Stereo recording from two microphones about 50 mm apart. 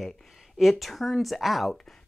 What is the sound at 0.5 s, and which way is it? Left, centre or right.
Speech, centre.